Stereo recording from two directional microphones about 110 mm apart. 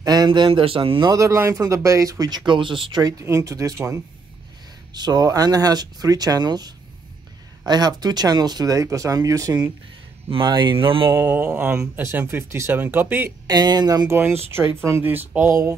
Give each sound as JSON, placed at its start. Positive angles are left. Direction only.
{"t": 0.0, "sound": "speech", "side_deg": -40}
{"t": 1.1, "sound": "speech", "side_deg": -25}
{"t": 3.0, "sound": "speech", "side_deg": -35}
{"t": 10.3, "sound": "speech", "side_deg": -45}
{"t": 11.1, "sound": "speech", "side_deg": -20}
{"t": 13.5, "sound": "speech", "side_deg": -40}
{"t": 14.0, "sound": "speech", "side_deg": -20}